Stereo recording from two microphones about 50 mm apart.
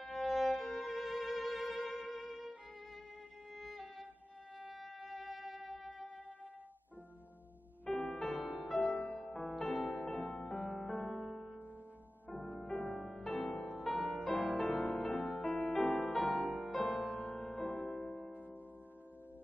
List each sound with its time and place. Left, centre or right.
0.0 s music: centre
3.5 s music: centre
4.6 s wind instrument: centre
4.8 s wind instrument: centre
7.9 s music: centre
10.5 s music: centre